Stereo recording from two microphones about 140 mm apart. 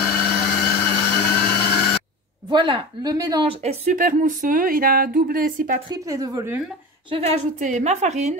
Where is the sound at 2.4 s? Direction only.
35° right (ahead or behind).